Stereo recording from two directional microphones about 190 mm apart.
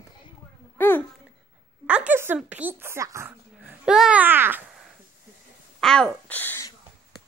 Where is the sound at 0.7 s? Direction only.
10° left (ahead or behind).